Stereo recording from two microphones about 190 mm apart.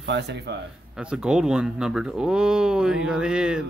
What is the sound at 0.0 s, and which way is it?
Speech, 65° right (ahead or behind).